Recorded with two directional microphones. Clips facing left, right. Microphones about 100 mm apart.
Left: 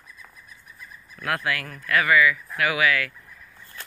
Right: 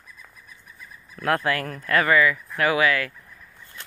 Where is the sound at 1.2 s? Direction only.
35° right (ahead or behind).